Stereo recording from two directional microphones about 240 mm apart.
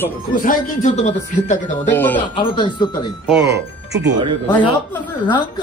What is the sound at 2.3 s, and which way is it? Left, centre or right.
Speech, centre.